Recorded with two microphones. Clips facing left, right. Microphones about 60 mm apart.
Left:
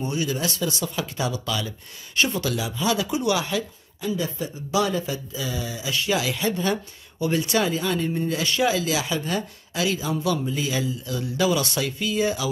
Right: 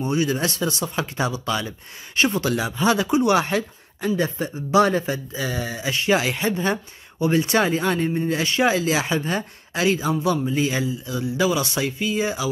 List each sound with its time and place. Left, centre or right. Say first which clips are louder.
0.0 s speech: right 4 dB; right